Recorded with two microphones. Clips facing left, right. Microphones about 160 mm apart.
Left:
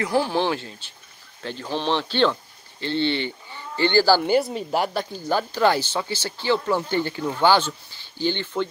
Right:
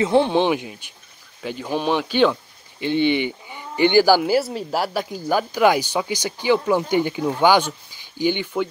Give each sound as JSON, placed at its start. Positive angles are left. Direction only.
{"t": 0.0, "sound": "speech", "side_deg": -20}